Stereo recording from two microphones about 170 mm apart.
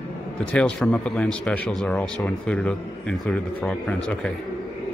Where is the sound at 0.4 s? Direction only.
5° left (ahead or behind).